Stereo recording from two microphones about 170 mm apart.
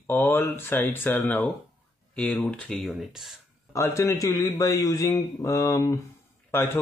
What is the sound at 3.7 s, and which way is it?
A man's voice, 15° left (ahead or behind).